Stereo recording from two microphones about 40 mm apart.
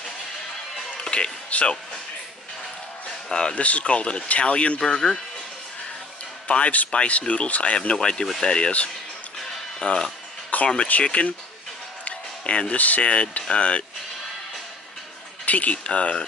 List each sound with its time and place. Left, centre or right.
0.9 s music: centre
1.5 s speech: left
3.3 s speech: left
3.5 s speech: left; by 5.2 s centre
6.4 s speech: left
7.7 s speech: left
9.8 s speech: centre
10.5 s a sound: left
10.9 s speech: left
12.0 s music: left
12.7 s speech: left
15.4 s speech: left